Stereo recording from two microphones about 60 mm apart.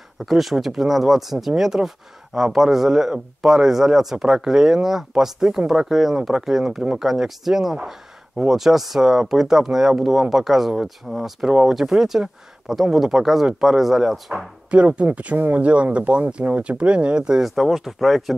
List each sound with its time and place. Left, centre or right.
0.2 s speech: centre
14.7 s speech: right
17.5 s speech: centre